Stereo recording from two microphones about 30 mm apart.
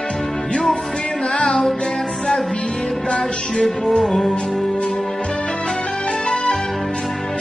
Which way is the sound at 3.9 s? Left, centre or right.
Centre.